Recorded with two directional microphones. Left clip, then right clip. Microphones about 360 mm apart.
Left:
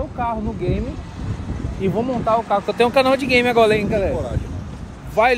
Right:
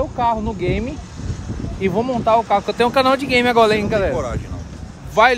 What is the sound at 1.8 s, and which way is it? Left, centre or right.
Speech, centre.